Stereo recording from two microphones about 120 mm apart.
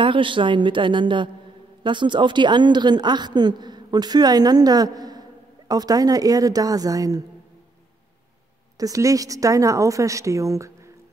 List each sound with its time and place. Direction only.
0.0 s a woman's voice: 45° right (ahead or behind)
8.7 s speech: 30° right (ahead or behind)